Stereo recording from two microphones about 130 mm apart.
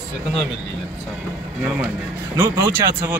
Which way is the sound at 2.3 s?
20° right (ahead or behind).